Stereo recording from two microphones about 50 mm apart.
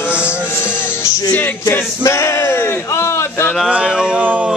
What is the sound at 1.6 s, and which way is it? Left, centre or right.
Speech, left.